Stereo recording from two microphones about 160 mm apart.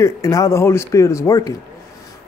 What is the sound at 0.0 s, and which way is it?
A man's voice, 20° left (ahead or behind).